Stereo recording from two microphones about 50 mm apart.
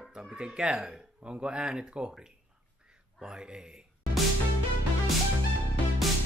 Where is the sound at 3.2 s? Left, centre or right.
Centre.